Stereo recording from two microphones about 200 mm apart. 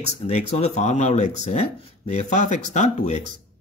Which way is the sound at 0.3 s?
30° left (ahead or behind).